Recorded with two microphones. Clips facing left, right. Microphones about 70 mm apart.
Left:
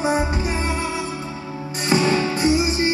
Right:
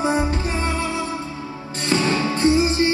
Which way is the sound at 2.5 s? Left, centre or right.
Right.